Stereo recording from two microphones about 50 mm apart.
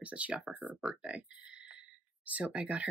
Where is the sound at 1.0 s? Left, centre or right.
Right.